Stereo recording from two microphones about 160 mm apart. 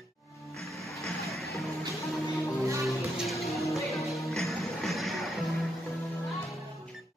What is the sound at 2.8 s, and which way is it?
Music, centre (ahead or behind).